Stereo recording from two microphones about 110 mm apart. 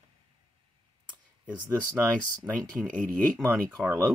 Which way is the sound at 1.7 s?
20° right (ahead or behind).